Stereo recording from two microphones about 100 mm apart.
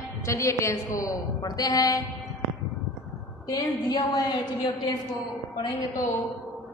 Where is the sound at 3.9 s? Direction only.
40° left (ahead or behind).